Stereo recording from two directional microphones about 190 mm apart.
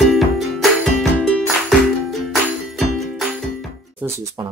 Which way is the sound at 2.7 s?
Centre (ahead or behind).